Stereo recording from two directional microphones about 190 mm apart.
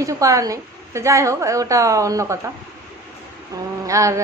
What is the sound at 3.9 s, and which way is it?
Speech, 15° right (ahead or behind).